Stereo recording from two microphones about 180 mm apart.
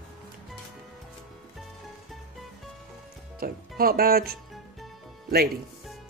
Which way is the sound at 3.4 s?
55° right (ahead or behind).